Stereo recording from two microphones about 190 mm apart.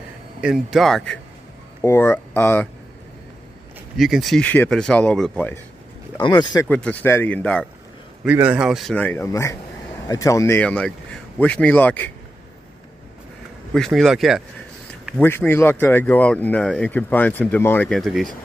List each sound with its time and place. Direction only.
0.4 s speech: 5° right (ahead or behind)
1.8 s speech: 15° left (ahead or behind)
4.0 s speech: centre (ahead or behind)
6.1 s speech: 25° left (ahead or behind)
6.7 s speech: 5° left (ahead or behind)
8.2 s speech: 10° right (ahead or behind); by 12.1 s 10° left (ahead or behind)
13.7 s speech: centre (ahead or behind)
15.1 s speech: 10° left (ahead or behind)